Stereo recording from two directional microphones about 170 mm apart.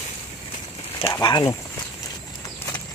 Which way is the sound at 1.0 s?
25° left (ahead or behind).